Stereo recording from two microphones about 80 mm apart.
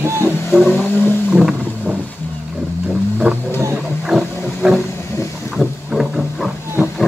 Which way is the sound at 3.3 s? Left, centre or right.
Centre.